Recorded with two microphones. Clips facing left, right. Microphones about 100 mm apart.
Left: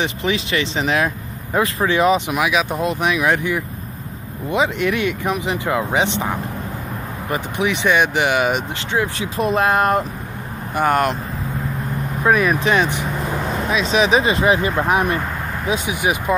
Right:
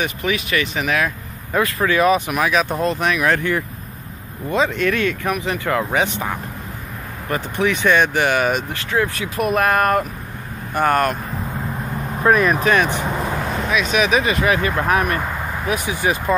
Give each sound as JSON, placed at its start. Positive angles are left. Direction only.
{"t": 0.0, "sound": "speech", "side_deg": 25}
{"t": 12.2, "sound": "speech", "side_deg": 5}
{"t": 12.6, "sound": "speech", "side_deg": 20}